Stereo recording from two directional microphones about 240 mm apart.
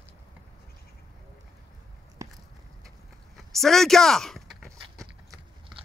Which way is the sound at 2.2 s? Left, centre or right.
Centre.